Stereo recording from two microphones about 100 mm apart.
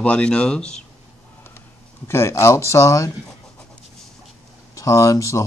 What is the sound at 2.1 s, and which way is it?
Speech, 25° left (ahead or behind).